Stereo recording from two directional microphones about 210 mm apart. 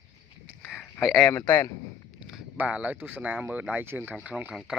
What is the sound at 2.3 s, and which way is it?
Speech, 5° right (ahead or behind).